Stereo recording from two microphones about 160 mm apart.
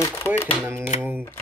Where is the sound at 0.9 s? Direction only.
45° left (ahead or behind).